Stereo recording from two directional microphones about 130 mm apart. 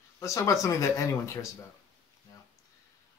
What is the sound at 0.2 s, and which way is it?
Speech, 25° left (ahead or behind).